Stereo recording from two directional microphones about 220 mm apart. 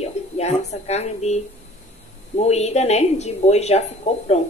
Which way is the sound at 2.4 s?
30° left (ahead or behind).